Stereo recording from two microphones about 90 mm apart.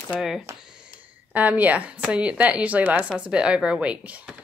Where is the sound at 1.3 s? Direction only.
20° right (ahead or behind).